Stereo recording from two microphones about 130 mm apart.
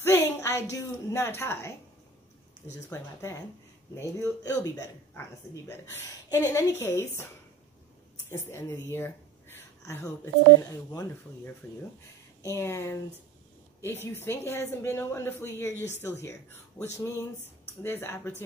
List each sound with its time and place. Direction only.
0.0 s a woman's voice: 20° left (ahead or behind)
2.9 s speech: 25° left (ahead or behind)
8.3 s speech: 20° left (ahead or behind)
12.4 s speech: 20° left (ahead or behind)
14.0 s speech: 20° left (ahead or behind)
17.8 s speech: 15° left (ahead or behind)